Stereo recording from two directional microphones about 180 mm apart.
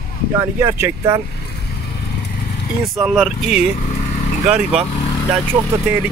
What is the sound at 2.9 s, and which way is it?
Speech, centre (ahead or behind).